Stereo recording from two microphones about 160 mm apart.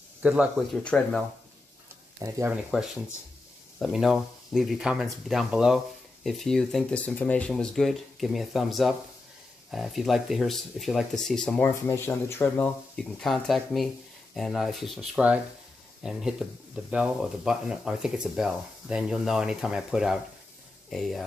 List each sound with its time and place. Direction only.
0.2 s speech: 10° right (ahead or behind)
0.6 s speech: 5° left (ahead or behind)
2.1 s speech: 20° right (ahead or behind)
2.5 s speech: 5° right (ahead or behind)